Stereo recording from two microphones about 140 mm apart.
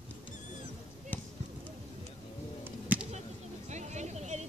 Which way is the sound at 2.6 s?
10° right (ahead or behind).